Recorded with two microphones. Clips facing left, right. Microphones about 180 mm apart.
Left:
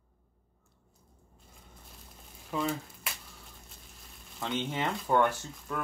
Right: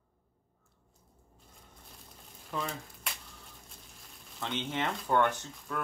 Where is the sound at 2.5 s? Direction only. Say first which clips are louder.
Left 5 dB; 5° left (ahead or behind).